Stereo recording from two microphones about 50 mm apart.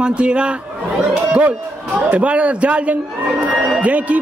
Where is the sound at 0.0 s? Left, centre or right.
Right.